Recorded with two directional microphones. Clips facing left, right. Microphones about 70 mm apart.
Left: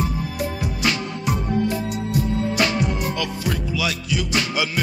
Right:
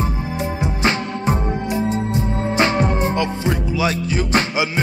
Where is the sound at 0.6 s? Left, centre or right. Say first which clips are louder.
Right 5 dB; right.